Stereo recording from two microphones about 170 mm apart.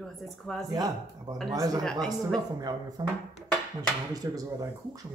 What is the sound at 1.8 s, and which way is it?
Speech, 5° left (ahead or behind).